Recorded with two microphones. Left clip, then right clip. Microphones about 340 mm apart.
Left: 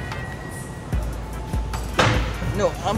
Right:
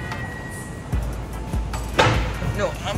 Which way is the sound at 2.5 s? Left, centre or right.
Centre.